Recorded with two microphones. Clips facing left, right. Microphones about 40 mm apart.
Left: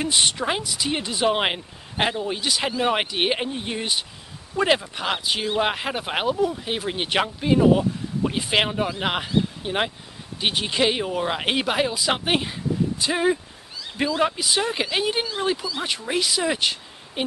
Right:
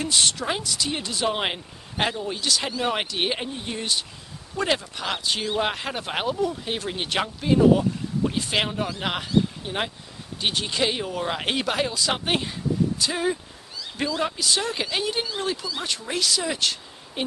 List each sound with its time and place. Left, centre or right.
0.0 s speech: centre